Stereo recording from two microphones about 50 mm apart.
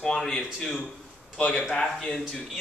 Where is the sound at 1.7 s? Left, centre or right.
Centre.